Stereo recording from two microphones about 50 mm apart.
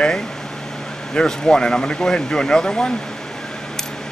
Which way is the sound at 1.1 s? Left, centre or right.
Centre.